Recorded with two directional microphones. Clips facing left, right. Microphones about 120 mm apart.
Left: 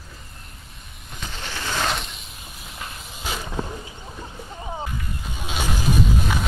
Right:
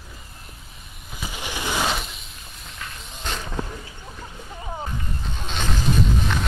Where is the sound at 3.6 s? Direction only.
20° left (ahead or behind).